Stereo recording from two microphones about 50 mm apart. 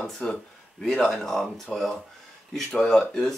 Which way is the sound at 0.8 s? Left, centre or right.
Centre.